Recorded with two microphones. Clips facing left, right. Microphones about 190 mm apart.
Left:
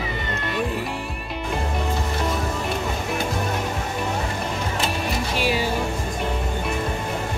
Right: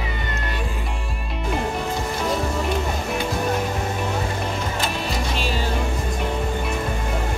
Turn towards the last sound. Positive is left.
turn(degrees=10)  # may be behind; listen again after turning